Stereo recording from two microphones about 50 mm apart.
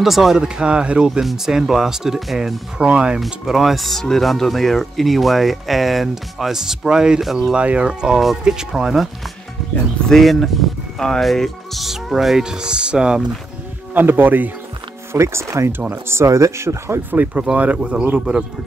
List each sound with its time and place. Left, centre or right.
0.0 s speech: centre
0.4 s speech: centre
2.8 s speech: right
3.3 s speech: centre
7.2 s speech: centre
7.5 s speech: right; by 9.1 s centre
10.0 s speech: centre
13.9 s speech: right
15.1 s speech: right
16.1 s speech: right
17.1 s speech: right; by 18.4 s centre